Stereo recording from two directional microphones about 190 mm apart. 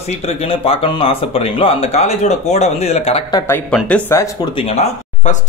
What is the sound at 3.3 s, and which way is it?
Speech, 10° left (ahead or behind).